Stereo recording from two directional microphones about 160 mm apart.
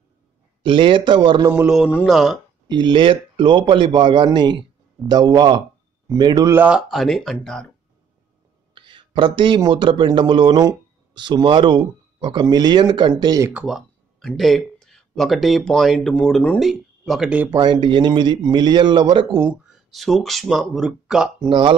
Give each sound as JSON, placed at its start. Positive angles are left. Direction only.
{"t": 0.6, "sound": "speech", "side_deg": -30}
{"t": 1.5, "sound": "speech", "side_deg": -5}
{"t": 2.7, "sound": "a man's voice", "side_deg": -30}
{"t": 6.6, "sound": "speech", "side_deg": -5}
{"t": 8.7, "sound": "speech", "side_deg": -30}
{"t": 13.5, "sound": "speech", "side_deg": -5}
{"t": 17.5, "sound": "a man's voice", "side_deg": -30}
{"t": 19.9, "sound": "speech", "side_deg": 0}
{"t": 21.5, "sound": "speech", "side_deg": -30}